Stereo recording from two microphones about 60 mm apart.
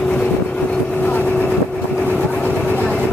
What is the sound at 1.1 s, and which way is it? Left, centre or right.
Vehicle, left.